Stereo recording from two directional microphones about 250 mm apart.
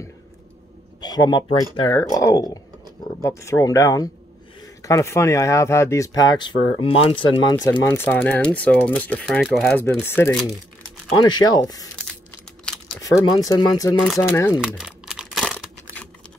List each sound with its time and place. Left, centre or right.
1.0 s speech: centre
12.6 s a sound: centre
13.2 s speech: centre
14.6 s crumpling: centre